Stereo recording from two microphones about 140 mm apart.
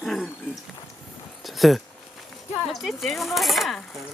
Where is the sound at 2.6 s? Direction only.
Centre (ahead or behind).